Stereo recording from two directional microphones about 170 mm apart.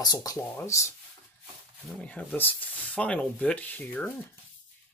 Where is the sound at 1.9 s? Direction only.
10° left (ahead or behind).